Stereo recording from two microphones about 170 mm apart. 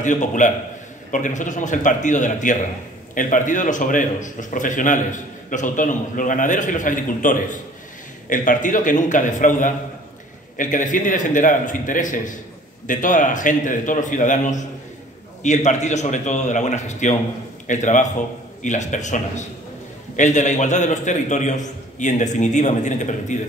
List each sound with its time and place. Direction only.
0.0 s a man's voice: 45° left (ahead or behind)